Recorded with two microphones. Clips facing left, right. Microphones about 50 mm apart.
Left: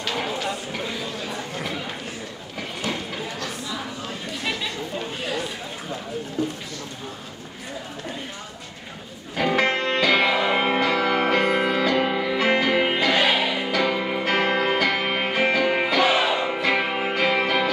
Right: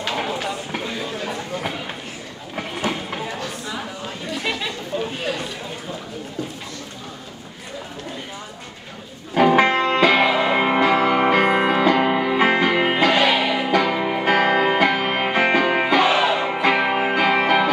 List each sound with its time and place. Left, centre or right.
0.0 s a sound: centre
9.3 s music: right
9.8 s music: right
10.2 s music: centre
10.8 s music: right
13.1 s music: centre
13.4 s music: right
16.1 s music: centre
16.3 s music: right